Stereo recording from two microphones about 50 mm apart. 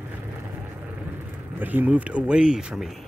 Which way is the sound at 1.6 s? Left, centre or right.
Right.